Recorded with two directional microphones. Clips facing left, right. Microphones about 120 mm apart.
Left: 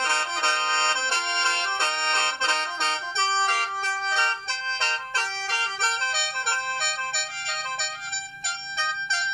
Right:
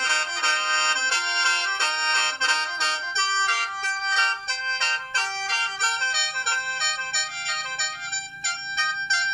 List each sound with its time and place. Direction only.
0.0 s accordion: 45° left (ahead or behind)
1.0 s music: 50° left (ahead or behind)